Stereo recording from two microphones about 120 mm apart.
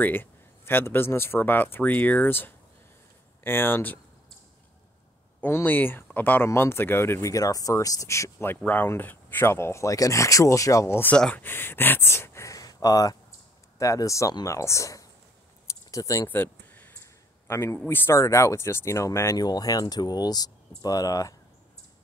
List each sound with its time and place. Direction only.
0.0 s speech: 15° left (ahead or behind)
5.4 s speech: 15° left (ahead or behind)
16.3 s a sound: 15° left (ahead or behind)
17.8 s speech: 20° left (ahead or behind)